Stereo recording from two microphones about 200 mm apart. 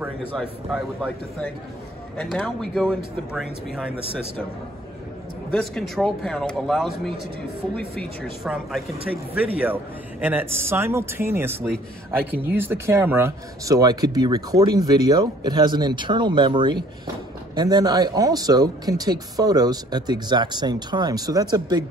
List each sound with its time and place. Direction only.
0.0 s speech: centre (ahead or behind)
2.1 s speech: 5° left (ahead or behind)
5.5 s speech: centre (ahead or behind)
7.9 s speech: 5° left (ahead or behind); by 21.8 s 20° right (ahead or behind)